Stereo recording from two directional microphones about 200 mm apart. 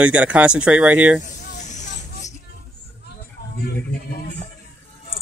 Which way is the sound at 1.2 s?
35° left (ahead or behind).